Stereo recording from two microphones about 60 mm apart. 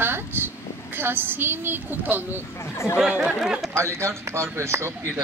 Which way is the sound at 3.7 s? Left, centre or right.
Right.